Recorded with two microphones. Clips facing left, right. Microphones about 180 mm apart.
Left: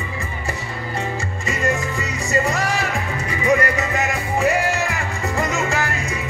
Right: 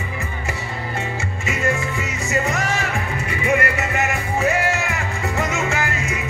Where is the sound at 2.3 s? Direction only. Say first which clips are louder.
Left 2 dB; 35° left (ahead or behind).